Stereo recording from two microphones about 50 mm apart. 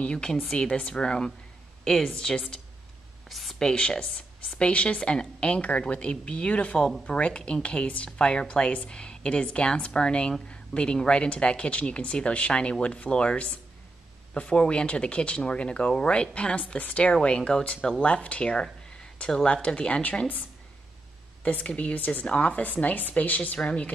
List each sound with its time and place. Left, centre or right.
0.0 s speech: centre
1.9 s speech: centre
3.3 s speech: centre
3.6 s speech: centre
6.8 s speech: centre; by 23.7 s left